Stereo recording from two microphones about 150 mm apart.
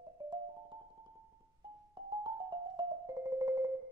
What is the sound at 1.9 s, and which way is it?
Music, 30° right (ahead or behind).